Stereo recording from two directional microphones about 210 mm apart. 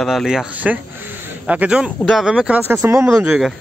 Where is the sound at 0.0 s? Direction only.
Centre (ahead or behind).